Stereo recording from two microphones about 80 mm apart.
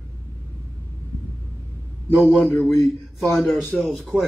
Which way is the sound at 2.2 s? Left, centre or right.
Centre.